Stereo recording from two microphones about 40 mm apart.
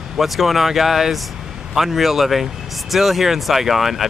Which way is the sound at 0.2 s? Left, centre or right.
Centre.